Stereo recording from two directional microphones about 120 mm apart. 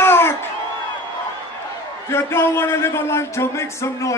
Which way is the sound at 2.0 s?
20° left (ahead or behind).